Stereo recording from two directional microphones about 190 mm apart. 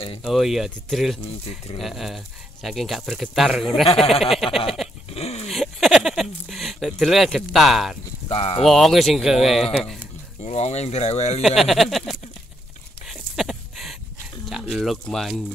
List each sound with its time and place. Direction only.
0.2 s speech: centre (ahead or behind)
5.1 s dog: 35° left (ahead or behind)
5.5 s speech: centre (ahead or behind)
8.3 s speech: 35° left (ahead or behind)
8.6 s speech: centre (ahead or behind)
10.4 s speech: 35° left (ahead or behind)
11.4 s speech: centre (ahead or behind)
13.0 s a sound: centre (ahead or behind)
14.4 s speech: centre (ahead or behind)